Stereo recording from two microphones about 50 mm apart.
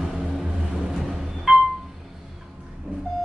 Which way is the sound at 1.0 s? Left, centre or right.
Centre.